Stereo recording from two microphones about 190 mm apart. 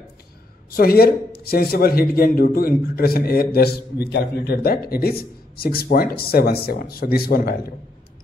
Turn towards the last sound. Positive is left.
turn(degrees=50)  # may be behind; listen again after turning